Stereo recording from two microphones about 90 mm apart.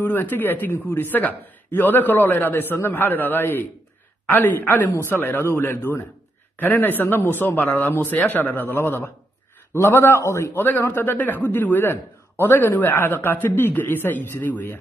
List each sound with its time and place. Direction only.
0.0 s a man's voice: 20° left (ahead or behind)
10.5 s a man's voice: 20° left (ahead or behind)